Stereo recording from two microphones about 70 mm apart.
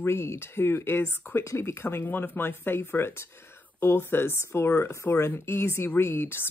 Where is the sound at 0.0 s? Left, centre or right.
Left.